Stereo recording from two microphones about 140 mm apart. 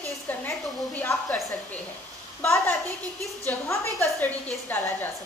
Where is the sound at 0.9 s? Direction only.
10° left (ahead or behind).